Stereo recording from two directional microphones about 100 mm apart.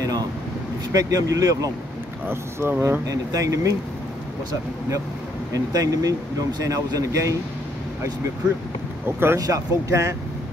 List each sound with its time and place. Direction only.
0.0 s air conditioning: 40° right (ahead or behind)
0.9 s speech: 35° right (ahead or behind)
2.2 s speech: 20° right (ahead or behind)
5.5 s speech: 35° right (ahead or behind)
9.0 s speech: 25° right (ahead or behind)